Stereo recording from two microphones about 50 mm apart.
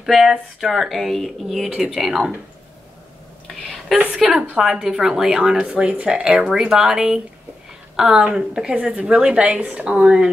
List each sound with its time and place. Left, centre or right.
0.0 s speech: centre
3.9 s speech: centre
4.8 s a woman's voice: centre